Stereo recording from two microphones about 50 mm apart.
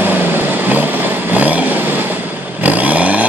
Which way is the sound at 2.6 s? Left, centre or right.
Right.